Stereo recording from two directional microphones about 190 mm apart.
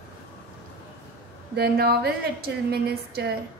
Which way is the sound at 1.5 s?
55° right (ahead or behind).